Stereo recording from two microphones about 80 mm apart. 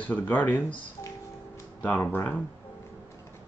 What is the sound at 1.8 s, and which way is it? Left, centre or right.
Speech, left.